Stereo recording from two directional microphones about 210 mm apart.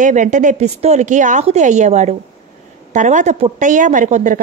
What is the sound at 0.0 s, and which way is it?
Speech, 35° right (ahead or behind).